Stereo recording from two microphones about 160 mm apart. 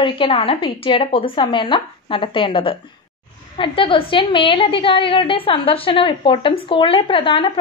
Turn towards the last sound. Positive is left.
turn(degrees=30)  # may be behind; listen again after turning